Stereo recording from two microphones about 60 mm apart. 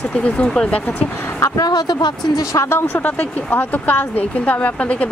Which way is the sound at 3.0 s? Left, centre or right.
Left.